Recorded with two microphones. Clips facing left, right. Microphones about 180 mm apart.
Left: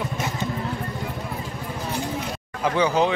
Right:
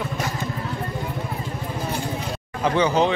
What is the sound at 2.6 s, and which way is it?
Speech, 5° left (ahead or behind).